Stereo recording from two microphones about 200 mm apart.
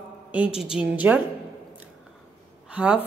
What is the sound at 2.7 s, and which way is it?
Speech, 5° right (ahead or behind).